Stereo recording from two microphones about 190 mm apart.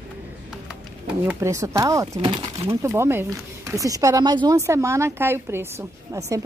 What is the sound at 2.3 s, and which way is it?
Speech, 30° right (ahead or behind).